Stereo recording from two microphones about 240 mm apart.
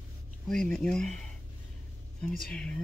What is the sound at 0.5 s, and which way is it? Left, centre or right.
Speech, centre.